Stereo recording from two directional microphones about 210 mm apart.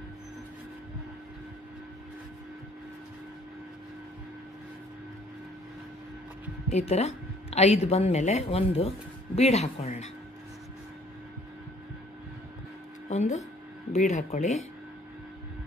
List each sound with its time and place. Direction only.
6.7 s speech: 30° left (ahead or behind)
13.1 s speech: 35° left (ahead or behind)